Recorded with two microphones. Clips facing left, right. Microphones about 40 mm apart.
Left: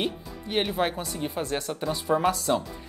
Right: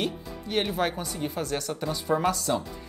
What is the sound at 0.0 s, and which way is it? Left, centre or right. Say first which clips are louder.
Music: even; left.